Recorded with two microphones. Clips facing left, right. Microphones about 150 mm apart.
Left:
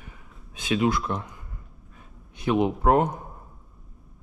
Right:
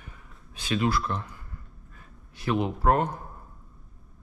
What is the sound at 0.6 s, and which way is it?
Speech, 20° left (ahead or behind).